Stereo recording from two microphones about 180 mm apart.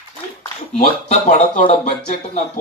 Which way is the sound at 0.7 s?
40° left (ahead or behind).